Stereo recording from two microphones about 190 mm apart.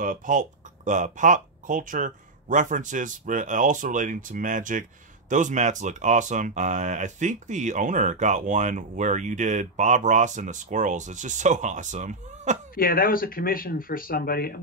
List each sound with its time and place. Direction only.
0.0 s speech: 45° right (ahead or behind)
12.7 s speech: 50° left (ahead or behind)